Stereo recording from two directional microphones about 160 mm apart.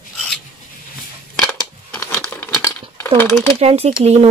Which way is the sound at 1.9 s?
15° left (ahead or behind).